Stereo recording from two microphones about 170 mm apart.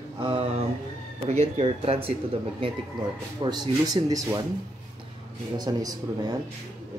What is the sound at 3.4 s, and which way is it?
Speech, 25° right (ahead or behind).